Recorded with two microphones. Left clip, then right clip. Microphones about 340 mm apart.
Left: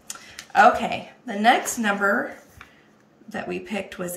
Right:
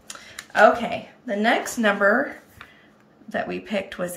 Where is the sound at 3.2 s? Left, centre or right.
Centre.